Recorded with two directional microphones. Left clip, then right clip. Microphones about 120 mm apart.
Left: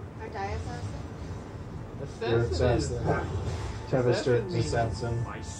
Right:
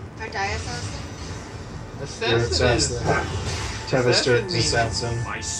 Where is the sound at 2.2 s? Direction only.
20° right (ahead or behind).